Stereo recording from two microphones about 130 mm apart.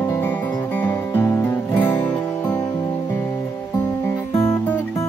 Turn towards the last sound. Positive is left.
turn(degrees=15)  # may be behind; listen again after turning